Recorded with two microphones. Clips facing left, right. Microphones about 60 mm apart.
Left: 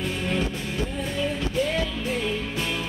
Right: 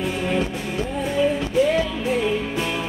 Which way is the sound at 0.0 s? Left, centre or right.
Centre.